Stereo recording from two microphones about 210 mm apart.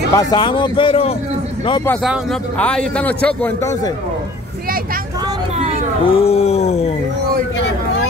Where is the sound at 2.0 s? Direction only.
Centre (ahead or behind).